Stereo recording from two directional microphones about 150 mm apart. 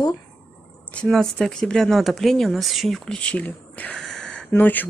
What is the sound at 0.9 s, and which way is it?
Speech, 5° left (ahead or behind).